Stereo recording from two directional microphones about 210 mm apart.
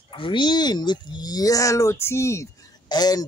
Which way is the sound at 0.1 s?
25° left (ahead or behind).